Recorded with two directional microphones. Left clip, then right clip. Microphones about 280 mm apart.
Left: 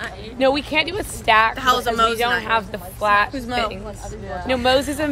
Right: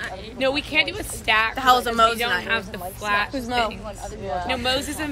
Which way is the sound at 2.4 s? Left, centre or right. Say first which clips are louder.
Left 4 dB; left.